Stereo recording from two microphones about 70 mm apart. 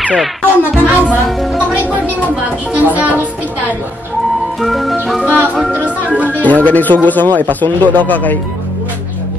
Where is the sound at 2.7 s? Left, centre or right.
Right.